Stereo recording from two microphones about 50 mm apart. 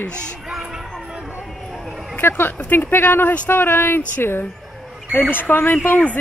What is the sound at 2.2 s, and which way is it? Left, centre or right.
Speech, left.